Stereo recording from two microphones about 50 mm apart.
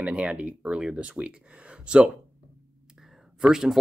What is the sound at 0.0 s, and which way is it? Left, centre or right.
Speech, right.